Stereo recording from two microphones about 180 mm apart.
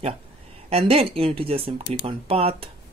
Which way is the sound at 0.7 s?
35° right (ahead or behind).